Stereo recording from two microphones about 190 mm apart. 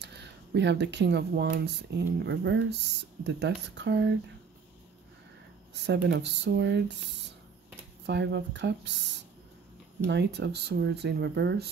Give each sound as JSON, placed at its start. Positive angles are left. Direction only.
{"t": 0.0, "sound": "speech", "side_deg": -65}
{"t": 5.9, "sound": "speech", "side_deg": -65}
{"t": 8.1, "sound": "speech", "side_deg": -65}